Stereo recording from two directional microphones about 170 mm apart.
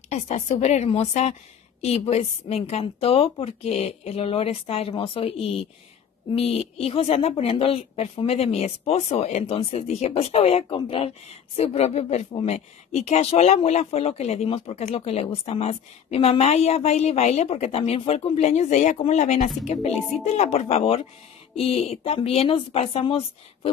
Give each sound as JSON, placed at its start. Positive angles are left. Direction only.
{"t": 0.1, "sound": "speech", "side_deg": 40}